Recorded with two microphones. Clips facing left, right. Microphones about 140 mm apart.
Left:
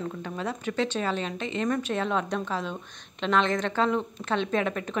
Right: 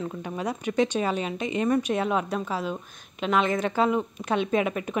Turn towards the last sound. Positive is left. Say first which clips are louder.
# right 2 dB
turn(degrees=-10)  # may be behind; listen again after turning